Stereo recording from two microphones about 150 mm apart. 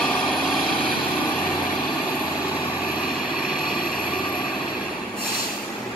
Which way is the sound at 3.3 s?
5° right (ahead or behind).